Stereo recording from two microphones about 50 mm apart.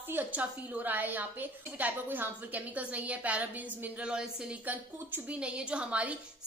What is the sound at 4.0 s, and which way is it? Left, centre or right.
A woman's voice, centre.